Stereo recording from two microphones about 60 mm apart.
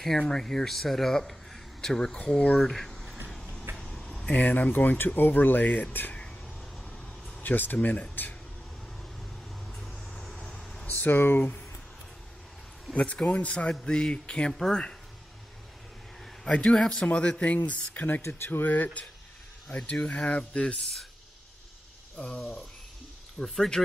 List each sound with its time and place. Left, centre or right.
0.0 s a man's voice: centre
2.6 s a sound: centre
4.3 s speech: left
7.4 s speech: left
9.8 s vehicle: centre
10.9 s speech: left
12.9 s speech: left
16.4 s a man's voice: centre
16.7 s speech: centre
17.1 s speech: centre
18.2 s speech: left; by 21.1 s centre
22.1 s cricket: centre
23.4 s speech: centre